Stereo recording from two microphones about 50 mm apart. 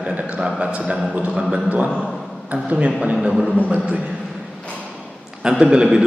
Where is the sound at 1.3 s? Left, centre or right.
Centre.